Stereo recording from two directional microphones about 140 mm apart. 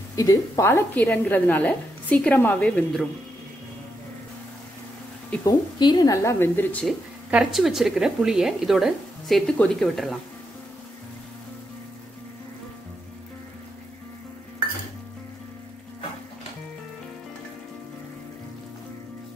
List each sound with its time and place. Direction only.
0.1 s a woman's voice: 25° left (ahead or behind); by 3.0 s 5° left (ahead or behind)
5.4 s speech: 30° left (ahead or behind); by 7.0 s 10° left (ahead or behind)
7.2 s a woman's voice: 5° right (ahead or behind)